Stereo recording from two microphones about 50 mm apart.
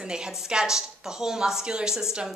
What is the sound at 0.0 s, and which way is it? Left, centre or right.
A woman's voice, centre.